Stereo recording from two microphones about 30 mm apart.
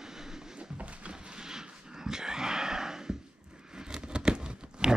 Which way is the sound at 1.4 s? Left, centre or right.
Centre.